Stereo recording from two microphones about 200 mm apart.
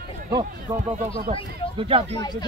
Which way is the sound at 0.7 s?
20° right (ahead or behind).